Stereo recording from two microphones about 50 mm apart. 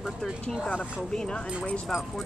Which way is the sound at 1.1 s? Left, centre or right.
Centre.